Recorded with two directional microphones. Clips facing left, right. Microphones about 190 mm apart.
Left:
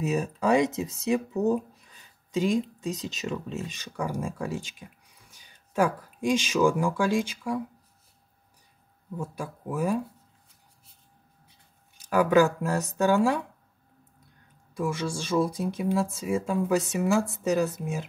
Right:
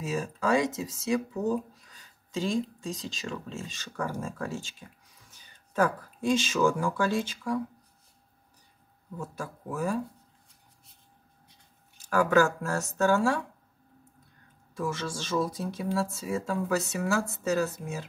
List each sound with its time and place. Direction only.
0.1 s speech: 20° left (ahead or behind)
9.2 s speech: 15° left (ahead or behind)
12.1 s speech: 15° left (ahead or behind)
14.7 s speech: 10° left (ahead or behind)